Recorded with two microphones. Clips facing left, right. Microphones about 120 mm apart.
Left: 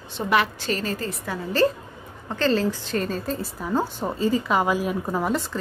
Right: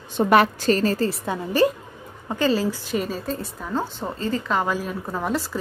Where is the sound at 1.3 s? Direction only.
15° right (ahead or behind); by 5.3 s 10° left (ahead or behind).